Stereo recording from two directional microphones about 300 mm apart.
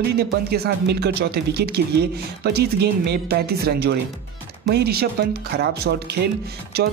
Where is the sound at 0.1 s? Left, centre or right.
Right.